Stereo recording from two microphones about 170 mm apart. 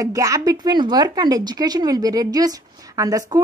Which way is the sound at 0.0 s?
20° right (ahead or behind).